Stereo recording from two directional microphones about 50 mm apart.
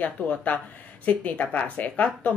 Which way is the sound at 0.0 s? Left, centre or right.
Left.